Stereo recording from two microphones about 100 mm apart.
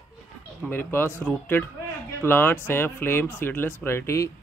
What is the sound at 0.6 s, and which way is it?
Speech, 20° left (ahead or behind).